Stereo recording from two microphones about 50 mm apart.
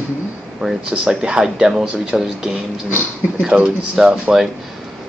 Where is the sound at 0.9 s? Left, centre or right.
Centre.